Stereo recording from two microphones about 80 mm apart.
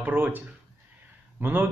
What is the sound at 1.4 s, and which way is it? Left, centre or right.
Speech, right.